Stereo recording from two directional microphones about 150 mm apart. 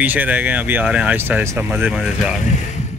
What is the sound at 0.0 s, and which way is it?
Speech, 10° right (ahead or behind).